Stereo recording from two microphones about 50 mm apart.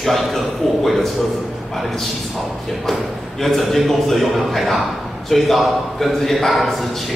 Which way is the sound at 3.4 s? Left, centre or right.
Centre.